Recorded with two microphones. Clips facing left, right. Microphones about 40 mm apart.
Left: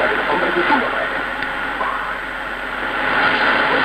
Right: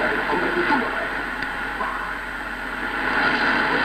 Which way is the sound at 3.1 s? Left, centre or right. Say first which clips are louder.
Left 4 dB; left.